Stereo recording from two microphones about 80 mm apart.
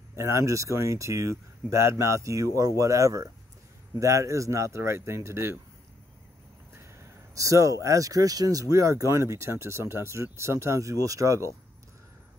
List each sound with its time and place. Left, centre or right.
0.1 s speech: right
7.3 s speech: right